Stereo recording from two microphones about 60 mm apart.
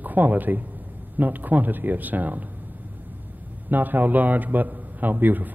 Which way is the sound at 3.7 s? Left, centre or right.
Right.